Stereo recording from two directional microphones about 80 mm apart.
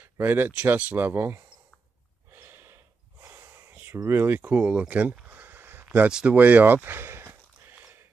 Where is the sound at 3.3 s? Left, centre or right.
Right.